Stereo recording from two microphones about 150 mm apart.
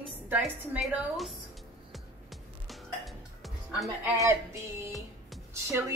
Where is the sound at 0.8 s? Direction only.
Centre (ahead or behind).